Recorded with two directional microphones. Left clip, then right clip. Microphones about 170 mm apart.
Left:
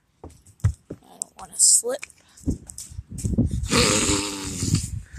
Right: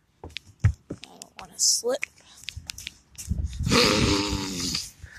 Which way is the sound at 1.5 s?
5° left (ahead or behind).